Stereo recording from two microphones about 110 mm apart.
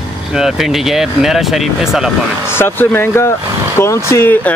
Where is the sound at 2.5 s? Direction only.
20° left (ahead or behind).